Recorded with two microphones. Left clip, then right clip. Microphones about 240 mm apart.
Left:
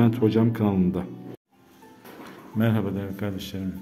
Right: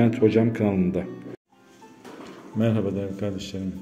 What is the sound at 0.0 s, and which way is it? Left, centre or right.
A man's voice, centre.